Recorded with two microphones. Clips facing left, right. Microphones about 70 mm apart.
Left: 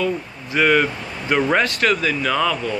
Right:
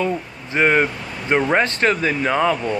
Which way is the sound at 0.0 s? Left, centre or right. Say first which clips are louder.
Even; right.